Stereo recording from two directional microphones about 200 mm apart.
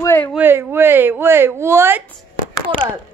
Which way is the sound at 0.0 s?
10° left (ahead or behind).